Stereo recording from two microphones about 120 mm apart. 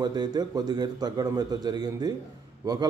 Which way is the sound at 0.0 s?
35° right (ahead or behind).